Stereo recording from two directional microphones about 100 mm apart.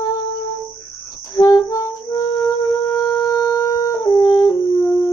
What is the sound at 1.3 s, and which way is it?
Music, 35° left (ahead or behind).